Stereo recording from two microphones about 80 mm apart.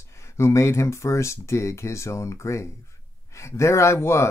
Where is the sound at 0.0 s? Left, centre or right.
Left.